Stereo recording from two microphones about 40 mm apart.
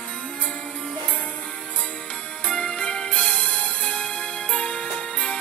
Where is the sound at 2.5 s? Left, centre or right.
Left.